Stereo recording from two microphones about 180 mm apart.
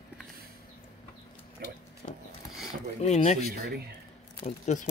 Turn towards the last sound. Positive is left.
turn(degrees=40)  # may be behind; listen again after turning